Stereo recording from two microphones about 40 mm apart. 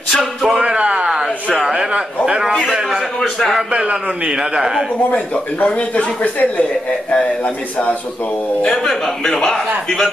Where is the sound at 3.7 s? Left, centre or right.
Right.